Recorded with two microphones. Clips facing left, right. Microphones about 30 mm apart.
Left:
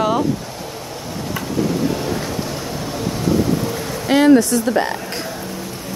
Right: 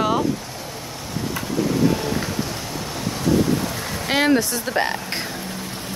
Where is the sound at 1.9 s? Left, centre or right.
Centre.